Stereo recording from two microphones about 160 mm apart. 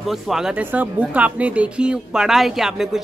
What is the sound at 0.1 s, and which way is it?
Speech, 5° right (ahead or behind).